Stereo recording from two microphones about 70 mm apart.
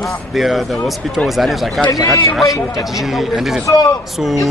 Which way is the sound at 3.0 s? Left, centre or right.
Centre.